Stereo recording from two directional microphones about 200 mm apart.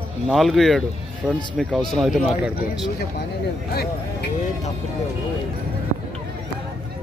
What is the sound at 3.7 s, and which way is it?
Speech, 50° left (ahead or behind).